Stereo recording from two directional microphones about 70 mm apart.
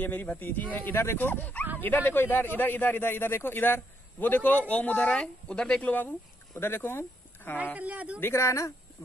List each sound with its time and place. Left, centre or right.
0.0 s a man's voice: left
5.9 s speech: left
7.7 s speech: centre
8.2 s speech: left